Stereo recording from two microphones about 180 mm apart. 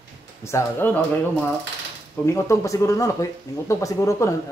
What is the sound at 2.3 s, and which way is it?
Speech, 15° left (ahead or behind).